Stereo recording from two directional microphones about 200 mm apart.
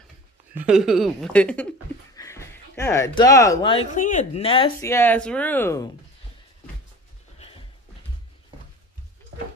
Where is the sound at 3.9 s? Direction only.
40° left (ahead or behind).